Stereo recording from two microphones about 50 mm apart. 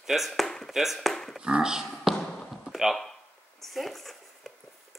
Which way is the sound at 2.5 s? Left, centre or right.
Centre.